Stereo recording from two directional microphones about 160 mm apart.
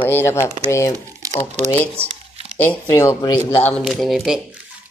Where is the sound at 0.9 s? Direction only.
20° right (ahead or behind).